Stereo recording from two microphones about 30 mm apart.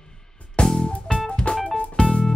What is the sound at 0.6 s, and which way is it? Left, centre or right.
Music, centre.